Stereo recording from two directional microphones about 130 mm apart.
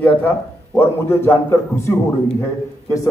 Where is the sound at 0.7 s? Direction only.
15° left (ahead or behind).